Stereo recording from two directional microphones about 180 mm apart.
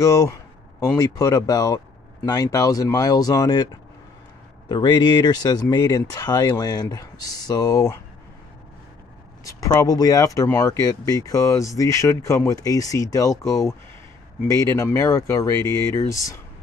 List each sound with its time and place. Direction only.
0.0 s speech: 20° left (ahead or behind)
4.6 s speech: 25° left (ahead or behind)
9.4 s speech: 20° left (ahead or behind)